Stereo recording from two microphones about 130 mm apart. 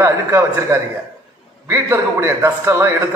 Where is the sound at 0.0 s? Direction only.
20° right (ahead or behind).